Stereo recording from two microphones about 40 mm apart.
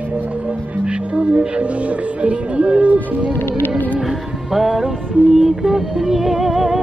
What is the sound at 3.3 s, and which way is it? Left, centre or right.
Music, left.